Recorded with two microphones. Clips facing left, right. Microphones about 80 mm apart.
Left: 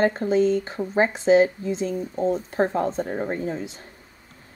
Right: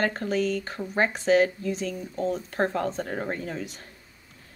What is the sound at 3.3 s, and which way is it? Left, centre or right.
Speech, left.